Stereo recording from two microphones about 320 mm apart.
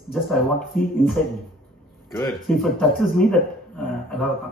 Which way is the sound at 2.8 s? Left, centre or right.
Centre.